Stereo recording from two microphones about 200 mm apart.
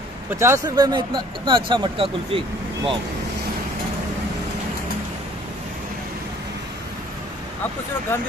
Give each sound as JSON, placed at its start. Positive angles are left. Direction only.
{"t": 0.4, "sound": "speech", "side_deg": -15}
{"t": 8.1, "sound": "speech", "side_deg": 10}